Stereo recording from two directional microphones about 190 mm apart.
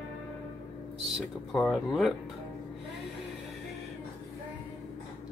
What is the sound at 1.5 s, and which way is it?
Speech, centre (ahead or behind).